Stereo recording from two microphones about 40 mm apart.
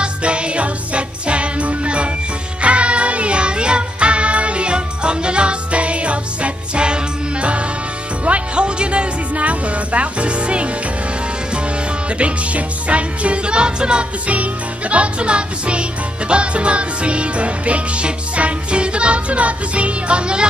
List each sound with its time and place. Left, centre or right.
0.0 s music: right
12.2 s music: right
14.2 s music: right